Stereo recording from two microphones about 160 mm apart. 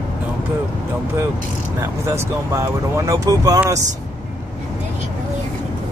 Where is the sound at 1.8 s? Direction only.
15° right (ahead or behind).